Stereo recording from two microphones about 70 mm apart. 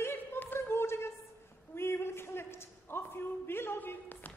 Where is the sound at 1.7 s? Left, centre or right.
Left.